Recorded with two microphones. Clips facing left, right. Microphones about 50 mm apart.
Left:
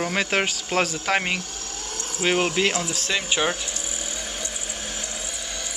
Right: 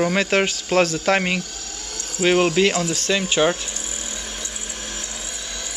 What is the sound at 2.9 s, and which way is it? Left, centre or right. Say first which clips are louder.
Speech: right 4 dB; centre.